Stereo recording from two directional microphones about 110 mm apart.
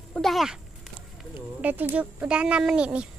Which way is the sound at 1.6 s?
15° right (ahead or behind).